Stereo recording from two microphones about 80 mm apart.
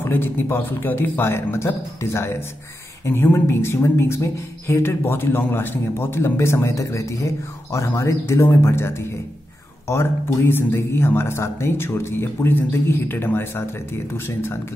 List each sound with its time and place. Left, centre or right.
0.0 s speech: left